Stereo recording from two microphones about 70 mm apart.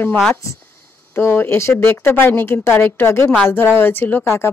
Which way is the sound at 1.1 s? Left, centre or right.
Left.